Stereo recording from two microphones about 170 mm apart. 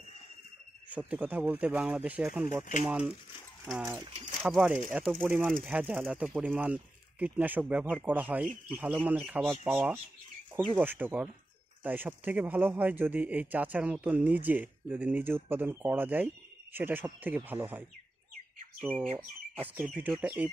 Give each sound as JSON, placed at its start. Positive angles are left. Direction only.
{"t": 0.8, "sound": "speech", "side_deg": -10}
{"t": 3.8, "sound": "speech", "side_deg": -15}
{"t": 4.4, "sound": "speech", "side_deg": -5}
{"t": 19.5, "sound": "speech", "side_deg": -10}